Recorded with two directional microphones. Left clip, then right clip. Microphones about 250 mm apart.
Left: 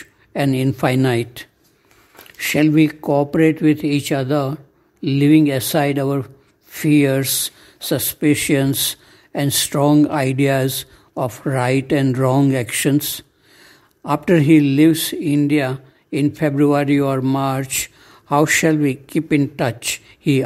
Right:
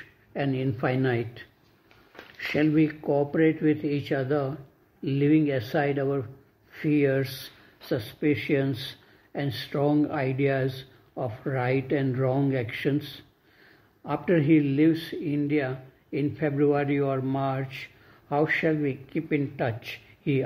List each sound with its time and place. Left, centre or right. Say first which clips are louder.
0.3 s speech: left 9 dB; left